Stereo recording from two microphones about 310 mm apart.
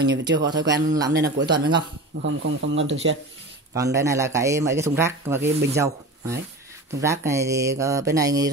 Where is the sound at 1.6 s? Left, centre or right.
Right.